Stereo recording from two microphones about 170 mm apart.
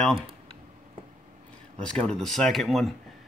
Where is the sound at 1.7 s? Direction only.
5° left (ahead or behind).